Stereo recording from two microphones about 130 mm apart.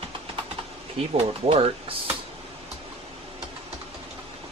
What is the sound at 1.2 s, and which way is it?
Speech, 45° right (ahead or behind).